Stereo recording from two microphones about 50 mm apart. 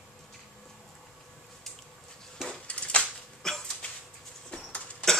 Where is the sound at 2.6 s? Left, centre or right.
Left.